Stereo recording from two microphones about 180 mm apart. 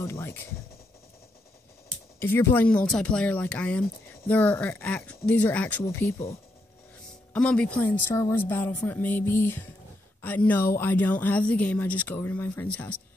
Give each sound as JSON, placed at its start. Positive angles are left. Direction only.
{"t": 0.0, "sound": "speech", "side_deg": 15}
{"t": 2.1, "sound": "speech", "side_deg": 10}
{"t": 7.3, "sound": "speech", "side_deg": 5}